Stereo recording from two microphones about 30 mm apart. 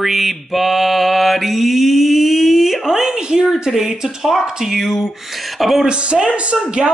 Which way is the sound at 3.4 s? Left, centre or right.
Centre.